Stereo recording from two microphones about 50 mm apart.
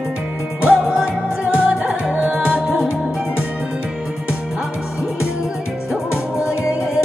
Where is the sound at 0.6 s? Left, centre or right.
Centre.